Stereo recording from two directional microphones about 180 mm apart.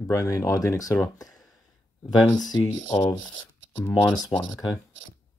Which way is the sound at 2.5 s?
20° left (ahead or behind).